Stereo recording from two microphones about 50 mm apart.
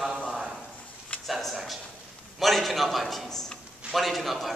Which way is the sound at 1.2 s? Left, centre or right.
Centre.